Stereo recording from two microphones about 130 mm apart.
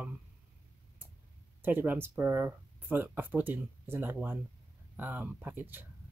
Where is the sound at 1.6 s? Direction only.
15° right (ahead or behind).